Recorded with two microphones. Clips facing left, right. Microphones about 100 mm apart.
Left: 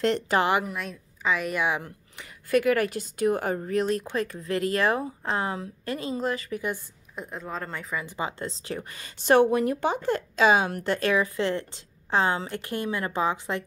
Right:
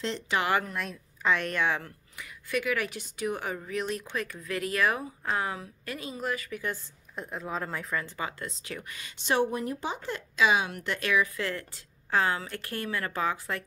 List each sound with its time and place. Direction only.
0.5 s speech: 15° left (ahead or behind)
0.7 s speech: centre (ahead or behind); by 2.2 s 20° left (ahead or behind)
2.2 s speech: 45° left (ahead or behind)
7.2 s speech: centre (ahead or behind)
8.0 s speech: 25° left (ahead or behind)
9.3 s speech: 65° left (ahead or behind); by 13.7 s 20° left (ahead or behind)